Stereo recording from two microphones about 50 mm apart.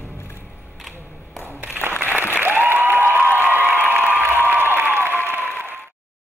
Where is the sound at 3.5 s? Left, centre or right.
Right.